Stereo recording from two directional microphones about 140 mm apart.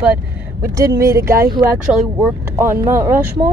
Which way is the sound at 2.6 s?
20° right (ahead or behind).